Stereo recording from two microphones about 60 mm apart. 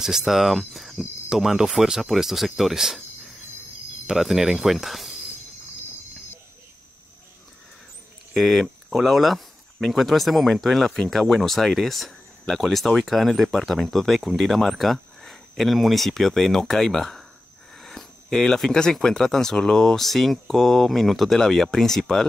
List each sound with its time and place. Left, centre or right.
0.0 s speech: centre
4.1 s speech: centre
8.3 s speech: centre
17.7 s a sound: centre
18.9 s speech: centre